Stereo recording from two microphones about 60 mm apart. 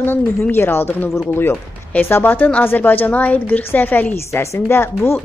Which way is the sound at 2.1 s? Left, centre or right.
Left.